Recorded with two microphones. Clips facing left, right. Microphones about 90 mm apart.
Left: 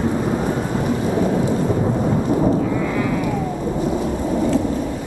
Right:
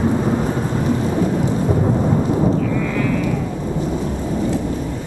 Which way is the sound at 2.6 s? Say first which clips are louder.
Even; 20° left (ahead or behind).